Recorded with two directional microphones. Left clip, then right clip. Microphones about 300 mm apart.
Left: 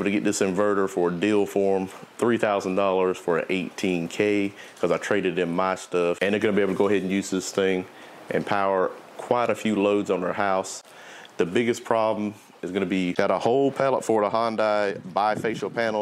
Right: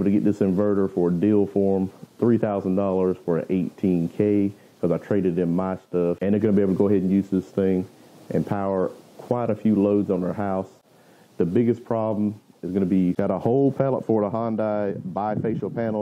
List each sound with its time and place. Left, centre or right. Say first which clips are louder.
0.0 s speech: right 1 dB; centre
13.5 s speech: right 4 dB; left
13.7 s speech: left 1 dB; centre